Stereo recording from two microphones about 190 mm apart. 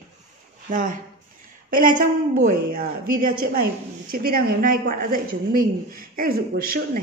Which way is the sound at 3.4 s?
50° right (ahead or behind).